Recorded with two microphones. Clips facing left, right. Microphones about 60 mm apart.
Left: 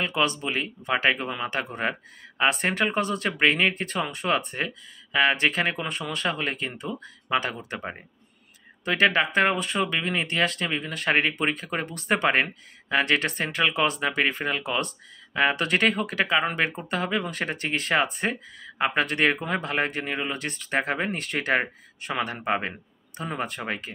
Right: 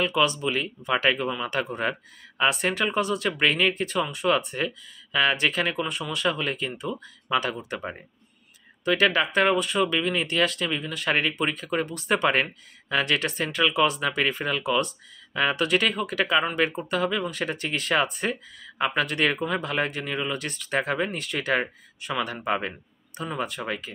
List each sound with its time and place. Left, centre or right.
0.0 s speech: left